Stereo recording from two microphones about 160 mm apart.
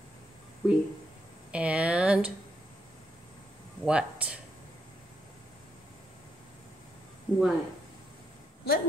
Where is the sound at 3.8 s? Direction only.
5° right (ahead or behind).